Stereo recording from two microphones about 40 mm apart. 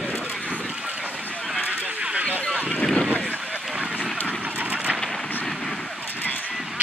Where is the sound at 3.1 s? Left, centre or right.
Left.